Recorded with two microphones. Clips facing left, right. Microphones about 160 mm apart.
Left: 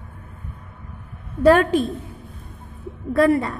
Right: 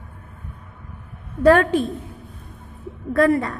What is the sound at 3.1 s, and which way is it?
Speech, 25° left (ahead or behind).